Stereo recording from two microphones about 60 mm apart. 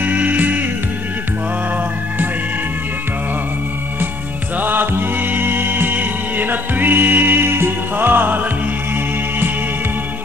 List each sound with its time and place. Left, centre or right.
0.0 s music: right
4.6 s music: right